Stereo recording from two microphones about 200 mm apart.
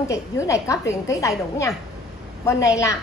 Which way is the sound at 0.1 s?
15° left (ahead or behind).